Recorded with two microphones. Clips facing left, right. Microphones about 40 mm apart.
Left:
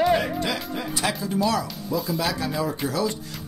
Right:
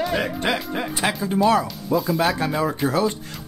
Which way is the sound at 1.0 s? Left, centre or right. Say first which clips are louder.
Right 5 dB; right.